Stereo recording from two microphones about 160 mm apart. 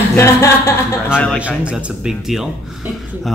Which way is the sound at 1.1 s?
5° left (ahead or behind).